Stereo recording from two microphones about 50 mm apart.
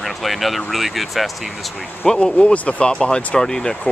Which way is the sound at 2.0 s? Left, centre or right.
Centre.